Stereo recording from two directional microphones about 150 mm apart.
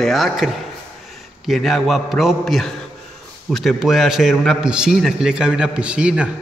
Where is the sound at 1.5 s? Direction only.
Centre (ahead or behind).